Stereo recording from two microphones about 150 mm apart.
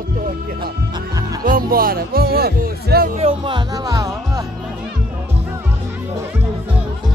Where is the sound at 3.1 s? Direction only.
40° right (ahead or behind); by 4.4 s 25° right (ahead or behind).